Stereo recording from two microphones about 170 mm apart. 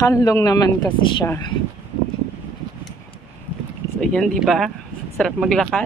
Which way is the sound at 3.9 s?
Centre (ahead or behind).